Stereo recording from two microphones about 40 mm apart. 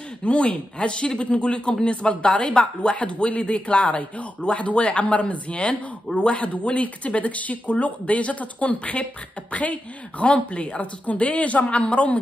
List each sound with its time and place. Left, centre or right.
0.2 s a woman's voice: left